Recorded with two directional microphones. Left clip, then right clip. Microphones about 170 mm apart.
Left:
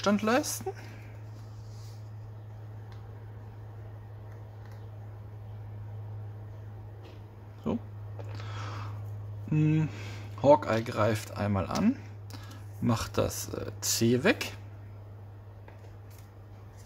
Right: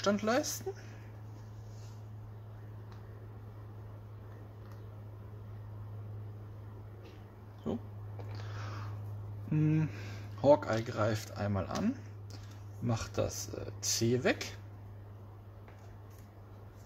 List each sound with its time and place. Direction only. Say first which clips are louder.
0.0 s speech: left 4 dB; 25° left (ahead or behind)
7.7 s a sound: left 5 dB; 30° left (ahead or behind)
9.5 s speech: left 4 dB; 15° left (ahead or behind); by 14.6 s 35° left (ahead or behind)